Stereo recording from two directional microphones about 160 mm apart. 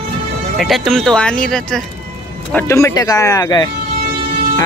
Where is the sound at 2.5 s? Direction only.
20° left (ahead or behind).